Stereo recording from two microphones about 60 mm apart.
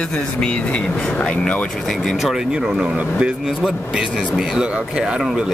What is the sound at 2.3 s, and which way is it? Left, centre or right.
Speech, centre.